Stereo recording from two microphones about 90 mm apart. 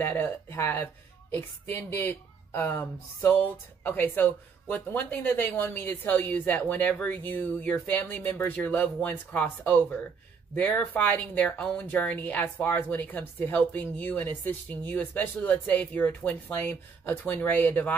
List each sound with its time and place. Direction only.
0.0 s speech: 20° left (ahead or behind)
1.9 s speech: 25° left (ahead or behind)